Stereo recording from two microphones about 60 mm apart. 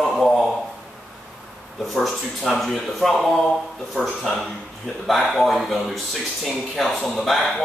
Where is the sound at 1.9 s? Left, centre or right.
Centre.